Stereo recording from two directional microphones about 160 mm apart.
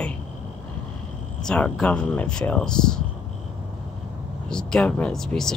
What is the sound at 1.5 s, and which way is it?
Speech, 5° left (ahead or behind).